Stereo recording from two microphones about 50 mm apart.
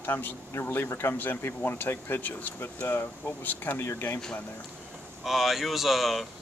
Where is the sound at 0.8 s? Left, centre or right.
Left.